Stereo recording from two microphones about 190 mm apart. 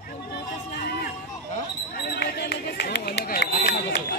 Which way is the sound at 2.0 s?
55° left (ahead or behind).